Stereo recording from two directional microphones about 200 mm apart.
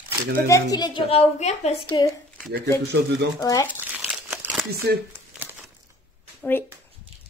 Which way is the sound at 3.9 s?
5° right (ahead or behind).